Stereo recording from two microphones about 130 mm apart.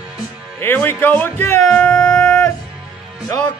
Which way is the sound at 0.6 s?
15° left (ahead or behind).